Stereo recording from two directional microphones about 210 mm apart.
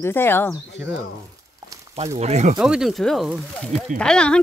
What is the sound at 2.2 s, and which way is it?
Speech, 30° right (ahead or behind).